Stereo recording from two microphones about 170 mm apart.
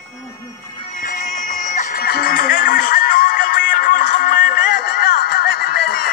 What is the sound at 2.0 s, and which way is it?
Music, 65° left (ahead or behind).